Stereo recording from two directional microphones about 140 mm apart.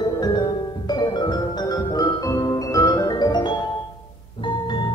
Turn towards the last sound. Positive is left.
turn(degrees=25)  # may be behind; listen again after turning